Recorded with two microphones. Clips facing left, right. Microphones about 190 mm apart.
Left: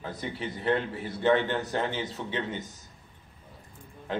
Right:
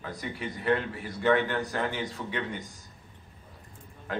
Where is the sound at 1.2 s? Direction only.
25° left (ahead or behind).